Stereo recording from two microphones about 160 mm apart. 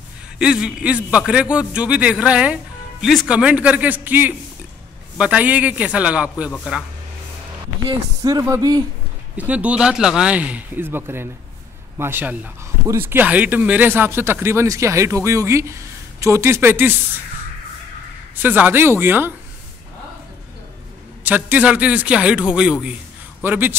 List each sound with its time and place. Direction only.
0.4 s speech: 5° right (ahead or behind)
7.9 s speech: 25° right (ahead or behind)
9.4 s speech: 10° right (ahead or behind)
18.3 s speech: 10° right (ahead or behind)
21.2 s speech: 10° right (ahead or behind)